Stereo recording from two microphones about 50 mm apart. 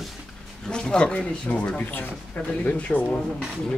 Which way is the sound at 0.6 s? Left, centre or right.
Centre.